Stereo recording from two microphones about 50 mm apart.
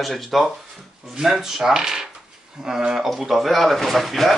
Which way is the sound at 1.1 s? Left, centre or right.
Centre.